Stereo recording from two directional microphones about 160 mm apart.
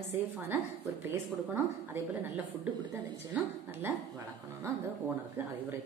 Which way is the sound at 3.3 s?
15° right (ahead or behind).